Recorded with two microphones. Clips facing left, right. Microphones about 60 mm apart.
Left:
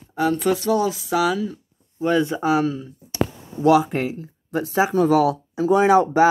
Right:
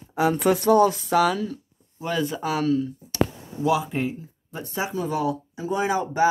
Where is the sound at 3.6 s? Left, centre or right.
Left.